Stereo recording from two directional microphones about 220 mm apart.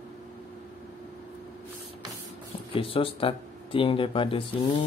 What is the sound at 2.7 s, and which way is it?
Speech, 25° left (ahead or behind).